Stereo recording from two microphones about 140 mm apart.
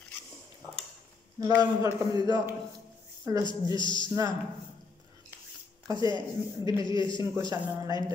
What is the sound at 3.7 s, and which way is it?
Speech, 30° left (ahead or behind).